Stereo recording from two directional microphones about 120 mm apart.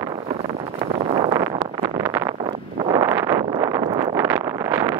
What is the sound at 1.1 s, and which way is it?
Vehicle, 35° right (ahead or behind).